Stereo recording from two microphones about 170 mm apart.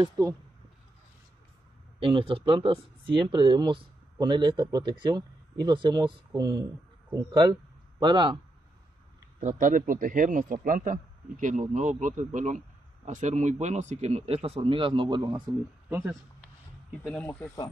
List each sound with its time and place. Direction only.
0.0 s speech: 25° right (ahead or behind)
2.0 s speech: 30° right (ahead or behind)
9.4 s a man's voice: 50° right (ahead or behind); by 15.4 s 25° right (ahead or behind)
15.9 s speech: 15° right (ahead or behind)
17.0 s speech: 5° left (ahead or behind)